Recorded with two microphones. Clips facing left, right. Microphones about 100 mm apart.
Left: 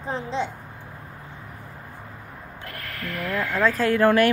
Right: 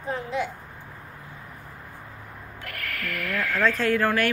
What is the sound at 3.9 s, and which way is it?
Speech, 20° left (ahead or behind).